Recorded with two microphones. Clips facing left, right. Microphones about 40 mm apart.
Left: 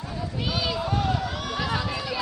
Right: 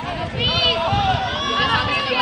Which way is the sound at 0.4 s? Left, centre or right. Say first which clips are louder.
Right 9 dB; right.